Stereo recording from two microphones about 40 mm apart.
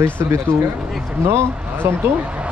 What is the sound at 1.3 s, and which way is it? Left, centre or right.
Speech, right.